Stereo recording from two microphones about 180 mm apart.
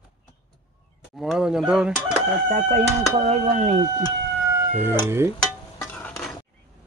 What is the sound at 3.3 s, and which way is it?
Speech, 40° right (ahead or behind).